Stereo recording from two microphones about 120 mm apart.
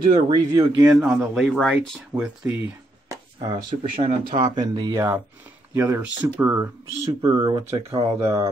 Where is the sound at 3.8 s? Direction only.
65° right (ahead or behind).